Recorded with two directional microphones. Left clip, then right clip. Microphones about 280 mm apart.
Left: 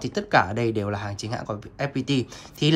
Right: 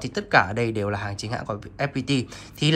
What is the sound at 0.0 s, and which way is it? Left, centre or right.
Speech, centre.